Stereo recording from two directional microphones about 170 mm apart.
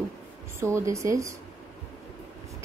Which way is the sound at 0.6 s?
15° right (ahead or behind).